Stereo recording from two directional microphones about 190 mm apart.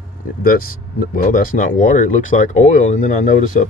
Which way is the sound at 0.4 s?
50° left (ahead or behind).